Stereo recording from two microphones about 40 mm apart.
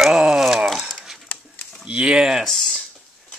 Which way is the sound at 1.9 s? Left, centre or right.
Right.